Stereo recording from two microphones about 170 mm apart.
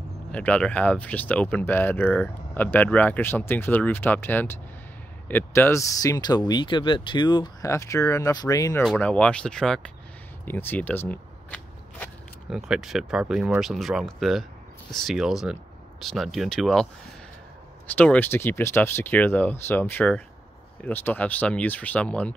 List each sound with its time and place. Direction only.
0.3 s speech: 5° left (ahead or behind)
8.8 s speech: 5° left (ahead or behind)
10.4 s shuffling cards: 10° left (ahead or behind)
12.4 s speech: centre (ahead or behind)
17.8 s speech: 10° left (ahead or behind)